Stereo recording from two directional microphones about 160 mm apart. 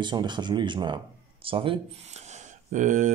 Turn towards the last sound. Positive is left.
turn(degrees=-50)  # may be behind; listen again after turning